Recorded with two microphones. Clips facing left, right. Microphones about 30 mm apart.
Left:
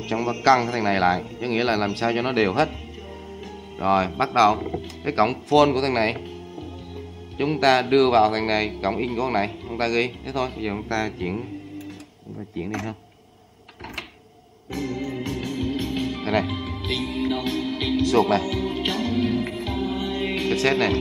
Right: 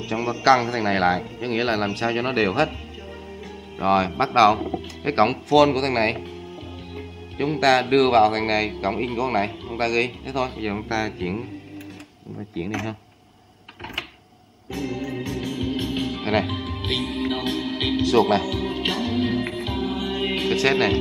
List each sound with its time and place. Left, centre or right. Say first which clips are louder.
0.2 s speech: right 1 dB; centre
3.7 s speech: right 1 dB; centre
5.5 s speech: even; centre
7.3 s speech: even; centre
10.5 s speech: right 1 dB; centre
12.5 s speech: right 1 dB; centre
15.2 s music: even; centre
15.6 s music: even; centre
18.0 s speech: right 1 dB; right
18.5 s music: even; centre
19.2 s music: even; right